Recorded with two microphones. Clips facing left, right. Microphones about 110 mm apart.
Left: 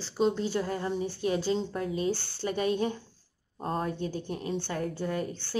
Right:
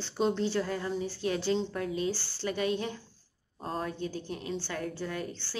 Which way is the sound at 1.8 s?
35° left (ahead or behind).